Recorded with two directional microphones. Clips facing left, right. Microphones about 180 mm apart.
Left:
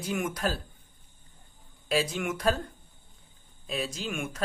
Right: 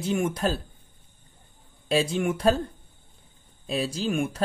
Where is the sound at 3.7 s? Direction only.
30° right (ahead or behind).